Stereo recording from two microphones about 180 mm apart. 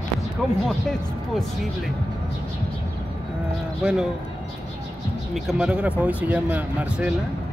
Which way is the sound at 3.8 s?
5° right (ahead or behind).